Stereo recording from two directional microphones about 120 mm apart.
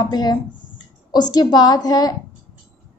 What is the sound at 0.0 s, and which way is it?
A woman's voice, 35° left (ahead or behind).